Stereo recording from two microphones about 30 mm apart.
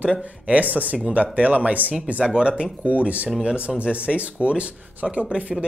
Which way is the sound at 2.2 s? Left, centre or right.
Right.